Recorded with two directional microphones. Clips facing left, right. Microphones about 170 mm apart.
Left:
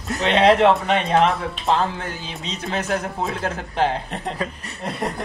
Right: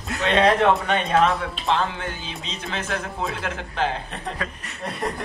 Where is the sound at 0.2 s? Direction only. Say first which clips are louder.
Left 3 dB; 30° left (ahead or behind).